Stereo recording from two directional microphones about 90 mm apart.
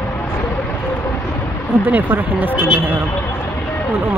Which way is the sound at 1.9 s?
20° right (ahead or behind).